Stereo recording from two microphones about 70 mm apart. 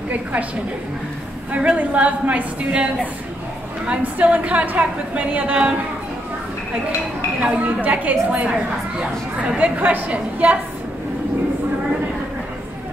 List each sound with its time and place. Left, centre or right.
0.1 s a woman's voice: right
1.5 s a woman's voice: centre
7.3 s a woman's voice: right